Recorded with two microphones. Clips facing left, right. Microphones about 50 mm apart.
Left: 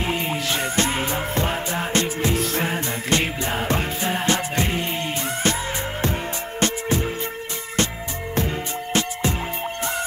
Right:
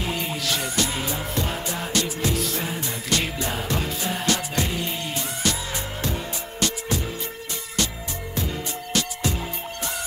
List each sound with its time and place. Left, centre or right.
0.0 s music: left
6.6 s music: left
8.4 s music: left